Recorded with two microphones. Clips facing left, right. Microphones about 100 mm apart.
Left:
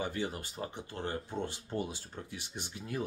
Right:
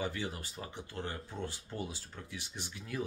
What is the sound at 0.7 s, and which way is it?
Speech, 20° left (ahead or behind).